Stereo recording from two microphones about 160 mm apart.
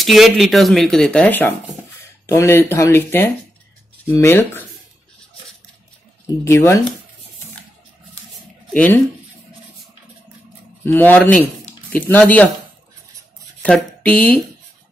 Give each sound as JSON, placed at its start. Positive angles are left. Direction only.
{"t": 0.0, "sound": "speech", "side_deg": 0}
{"t": 6.2, "sound": "speech", "side_deg": 20}
{"t": 8.7, "sound": "speech", "side_deg": 10}
{"t": 10.8, "sound": "speech", "side_deg": 10}
{"t": 13.6, "sound": "speech", "side_deg": 10}